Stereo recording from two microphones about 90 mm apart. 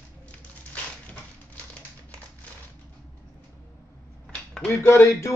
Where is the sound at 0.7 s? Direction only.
15° left (ahead or behind).